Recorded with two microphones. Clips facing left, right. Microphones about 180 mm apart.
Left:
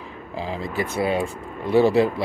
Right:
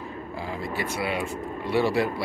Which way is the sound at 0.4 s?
90° left.